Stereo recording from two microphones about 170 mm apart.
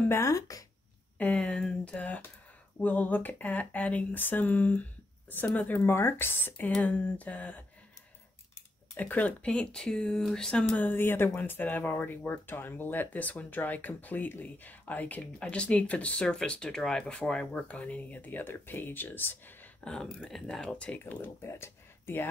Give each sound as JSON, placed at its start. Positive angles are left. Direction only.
{"t": 0.1, "sound": "speech", "side_deg": 20}
{"t": 1.1, "sound": "speech", "side_deg": 5}
{"t": 8.9, "sound": "speech", "side_deg": 10}